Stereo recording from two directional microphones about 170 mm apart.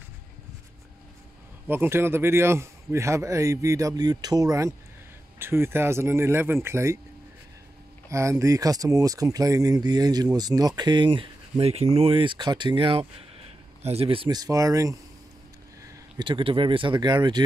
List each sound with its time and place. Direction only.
1.7 s speech: 15° right (ahead or behind)
8.1 s speech: 15° right (ahead or behind)
16.2 s speech: 30° right (ahead or behind)